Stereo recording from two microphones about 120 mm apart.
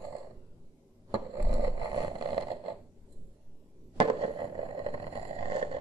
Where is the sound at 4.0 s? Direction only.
45° right (ahead or behind).